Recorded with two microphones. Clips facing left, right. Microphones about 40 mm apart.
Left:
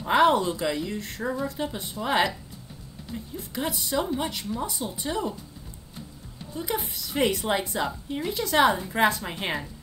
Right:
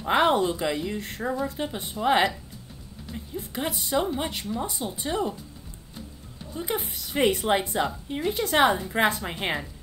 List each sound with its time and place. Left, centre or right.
0.1 s a sound: centre
0.4 s a woman's voice: centre
1.2 s speech: centre
1.6 s a woman's voice: centre
3.3 s a woman's voice: centre
6.7 s a woman's voice: centre
8.3 s a woman's voice: right
8.6 s a woman's voice: centre